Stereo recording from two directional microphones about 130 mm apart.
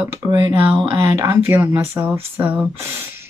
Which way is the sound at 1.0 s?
20° right (ahead or behind).